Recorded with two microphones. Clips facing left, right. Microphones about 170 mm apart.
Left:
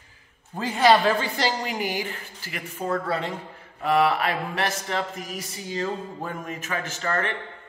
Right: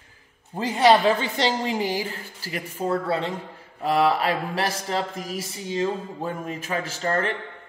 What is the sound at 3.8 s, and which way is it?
Mantra, 30° right (ahead or behind).